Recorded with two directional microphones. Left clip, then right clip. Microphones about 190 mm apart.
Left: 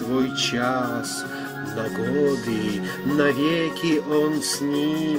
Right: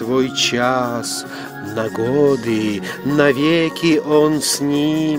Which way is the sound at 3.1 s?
50° right (ahead or behind).